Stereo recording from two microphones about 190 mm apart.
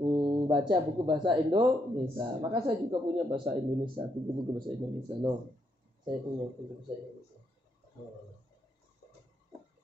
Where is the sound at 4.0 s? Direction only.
20° right (ahead or behind).